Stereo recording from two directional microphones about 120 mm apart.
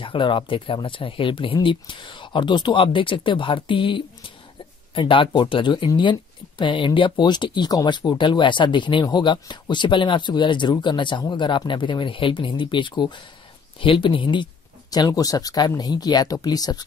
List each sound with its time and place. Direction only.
0.0 s speech: 45° left (ahead or behind)